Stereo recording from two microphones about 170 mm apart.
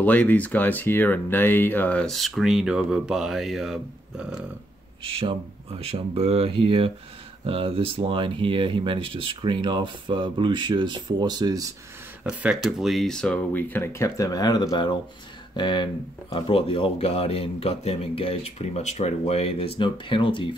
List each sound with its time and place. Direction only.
0.0 s speech: 10° left (ahead or behind)
5.8 s speech: 35° right (ahead or behind)
12.2 s speech: 10° right (ahead or behind); by 20.4 s 30° left (ahead or behind)